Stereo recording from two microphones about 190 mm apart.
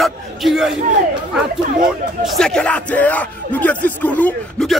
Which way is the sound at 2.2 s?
5° left (ahead or behind).